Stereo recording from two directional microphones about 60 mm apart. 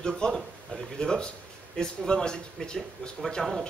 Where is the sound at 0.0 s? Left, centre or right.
Centre.